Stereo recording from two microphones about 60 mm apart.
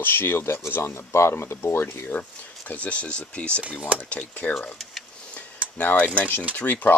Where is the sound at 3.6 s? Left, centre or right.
Right.